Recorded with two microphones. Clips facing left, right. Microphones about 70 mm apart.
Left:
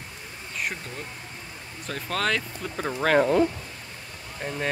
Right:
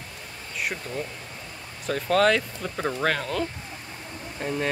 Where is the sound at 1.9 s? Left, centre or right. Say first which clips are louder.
Right 6 dB; centre.